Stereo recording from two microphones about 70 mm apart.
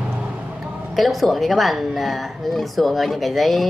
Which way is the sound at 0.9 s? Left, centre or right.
Centre.